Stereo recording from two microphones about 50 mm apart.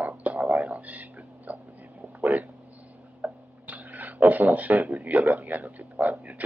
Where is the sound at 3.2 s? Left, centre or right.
Right.